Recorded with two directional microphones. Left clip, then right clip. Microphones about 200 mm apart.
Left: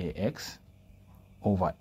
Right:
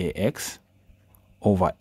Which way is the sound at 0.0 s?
35° right (ahead or behind).